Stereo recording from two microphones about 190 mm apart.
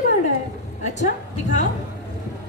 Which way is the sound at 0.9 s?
40° left (ahead or behind).